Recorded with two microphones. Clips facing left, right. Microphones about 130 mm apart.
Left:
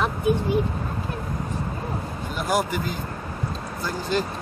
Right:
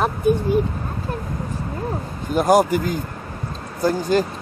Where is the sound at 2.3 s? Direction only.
45° right (ahead or behind).